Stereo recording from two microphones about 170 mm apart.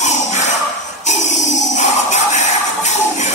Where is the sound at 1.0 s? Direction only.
45° left (ahead or behind).